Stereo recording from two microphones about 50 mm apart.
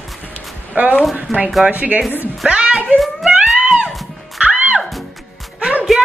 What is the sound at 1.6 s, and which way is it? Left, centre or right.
Speech, right.